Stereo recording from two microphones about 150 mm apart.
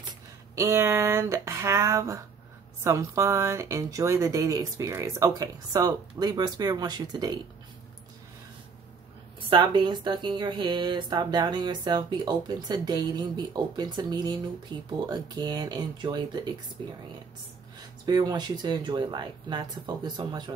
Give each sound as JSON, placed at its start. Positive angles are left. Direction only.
{"t": 0.6, "sound": "speech", "side_deg": -20}
{"t": 9.5, "sound": "speech", "side_deg": -30}
{"t": 18.0, "sound": "speech", "side_deg": -25}